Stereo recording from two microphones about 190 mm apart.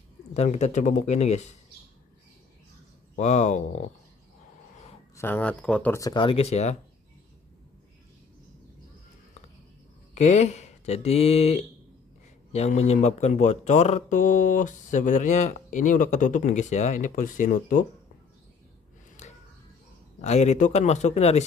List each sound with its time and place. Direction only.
0.3 s speech: 35° left (ahead or behind)
3.2 s speech: 35° left (ahead or behind)
5.1 s speech: 10° left (ahead or behind); by 6.8 s 35° left (ahead or behind)
10.1 s speech: 35° left (ahead or behind)
12.5 s speech: 35° left (ahead or behind)
19.2 s a sound: 40° left (ahead or behind)
20.2 s speech: 35° left (ahead or behind)